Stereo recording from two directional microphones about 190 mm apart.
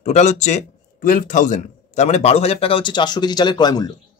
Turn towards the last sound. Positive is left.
turn(degrees=20)  # may be behind; listen again after turning